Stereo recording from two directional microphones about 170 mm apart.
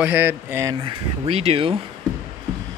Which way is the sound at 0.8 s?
35° right (ahead or behind).